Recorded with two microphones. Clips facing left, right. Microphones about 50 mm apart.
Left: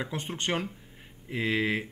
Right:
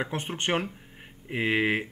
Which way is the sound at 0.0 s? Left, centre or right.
Right.